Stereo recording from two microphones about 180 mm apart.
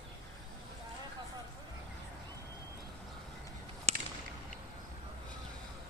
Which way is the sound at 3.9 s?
35° right (ahead or behind).